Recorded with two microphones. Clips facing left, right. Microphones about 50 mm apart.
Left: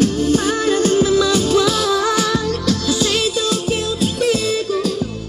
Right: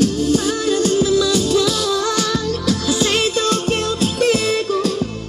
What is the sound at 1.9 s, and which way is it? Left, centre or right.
Music, centre.